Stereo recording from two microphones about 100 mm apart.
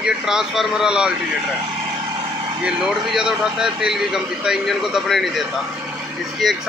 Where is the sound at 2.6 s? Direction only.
5° right (ahead or behind).